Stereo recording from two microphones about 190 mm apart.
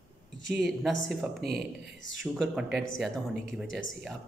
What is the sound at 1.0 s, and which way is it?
Speech, centre (ahead or behind).